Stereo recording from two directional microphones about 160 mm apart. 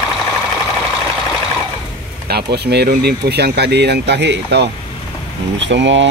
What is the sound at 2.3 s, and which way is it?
Speech, 85° right.